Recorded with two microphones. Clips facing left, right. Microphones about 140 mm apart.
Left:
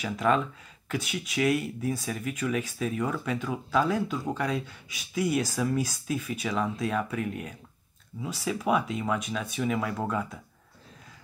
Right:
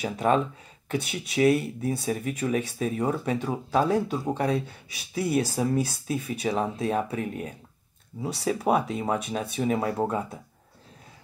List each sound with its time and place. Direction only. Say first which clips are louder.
0.0 s speech: right 2 dB; 35° right (ahead or behind)